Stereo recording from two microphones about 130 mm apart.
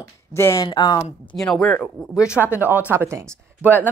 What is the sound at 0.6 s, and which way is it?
Speech, 35° left (ahead or behind).